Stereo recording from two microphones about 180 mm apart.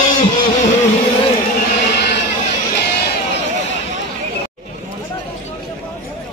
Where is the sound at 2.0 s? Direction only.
70° left (ahead or behind).